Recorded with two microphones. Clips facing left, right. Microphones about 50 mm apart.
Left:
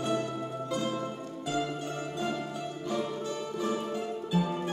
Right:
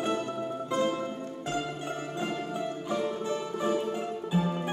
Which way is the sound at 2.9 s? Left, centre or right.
Right.